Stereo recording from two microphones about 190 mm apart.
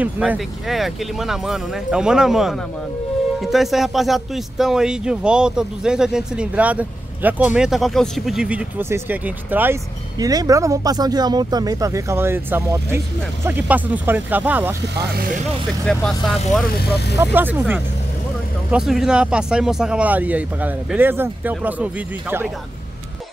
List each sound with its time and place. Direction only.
0.0 s speech: 5° right (ahead or behind)
10.1 s speech: 20° right (ahead or behind)
15.8 s speech: centre (ahead or behind)
16.7 s speech: 55° left (ahead or behind)
17.2 s speech: 10° right (ahead or behind)